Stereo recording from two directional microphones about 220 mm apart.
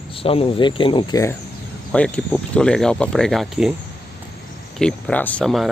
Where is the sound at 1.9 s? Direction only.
5° left (ahead or behind).